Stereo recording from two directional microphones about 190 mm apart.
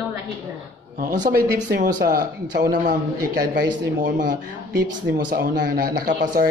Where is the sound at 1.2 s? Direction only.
55° right (ahead or behind).